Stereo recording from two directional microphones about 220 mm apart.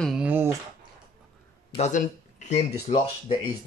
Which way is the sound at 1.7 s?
30° left (ahead or behind).